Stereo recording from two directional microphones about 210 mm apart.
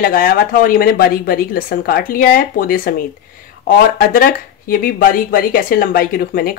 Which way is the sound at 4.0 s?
40° left (ahead or behind).